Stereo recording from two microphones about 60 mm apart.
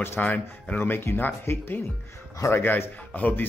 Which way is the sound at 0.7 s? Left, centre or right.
Left.